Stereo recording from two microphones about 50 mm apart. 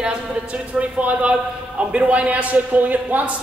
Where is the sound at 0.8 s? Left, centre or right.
Right.